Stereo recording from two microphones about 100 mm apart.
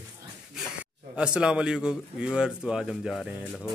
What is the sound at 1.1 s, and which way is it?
Speech, 10° right (ahead or behind).